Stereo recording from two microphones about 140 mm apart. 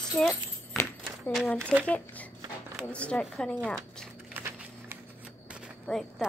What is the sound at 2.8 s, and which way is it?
Speech, 10° left (ahead or behind).